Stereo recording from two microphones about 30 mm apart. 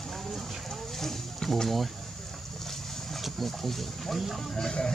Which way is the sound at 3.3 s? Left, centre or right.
Centre.